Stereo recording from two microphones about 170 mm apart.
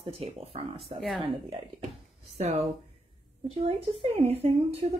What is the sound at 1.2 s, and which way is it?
Speech, 30° right (ahead or behind).